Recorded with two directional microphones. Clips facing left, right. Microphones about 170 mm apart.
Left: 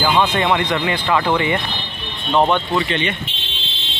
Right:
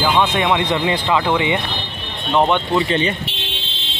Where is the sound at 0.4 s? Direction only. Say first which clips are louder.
Right 1 dB; 15° right (ahead or behind).